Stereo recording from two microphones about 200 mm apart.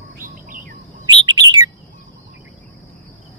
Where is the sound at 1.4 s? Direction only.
20° right (ahead or behind).